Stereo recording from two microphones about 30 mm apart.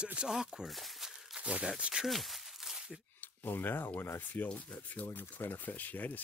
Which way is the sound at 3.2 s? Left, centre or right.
Left.